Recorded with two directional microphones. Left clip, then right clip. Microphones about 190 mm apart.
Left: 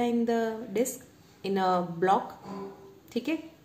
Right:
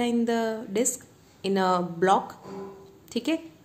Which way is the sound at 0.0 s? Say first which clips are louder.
Right 2 dB; 25° right (ahead or behind).